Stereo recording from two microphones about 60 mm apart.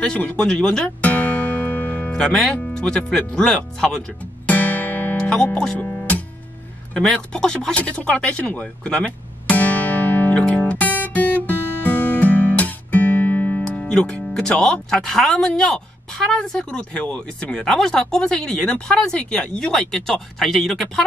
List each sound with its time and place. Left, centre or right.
0.0 s speech: centre
1.0 s music: left
2.1 s speech: centre
4.2 s music: left
5.1 s music: centre
5.8 s music: left
6.9 s speech: centre; by 10.4 s left
10.5 s music: left
14.6 s speech: centre